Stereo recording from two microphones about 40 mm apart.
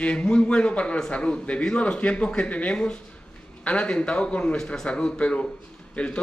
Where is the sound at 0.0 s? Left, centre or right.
Left.